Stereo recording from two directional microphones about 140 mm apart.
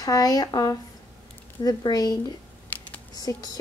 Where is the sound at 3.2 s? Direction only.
25° left (ahead or behind).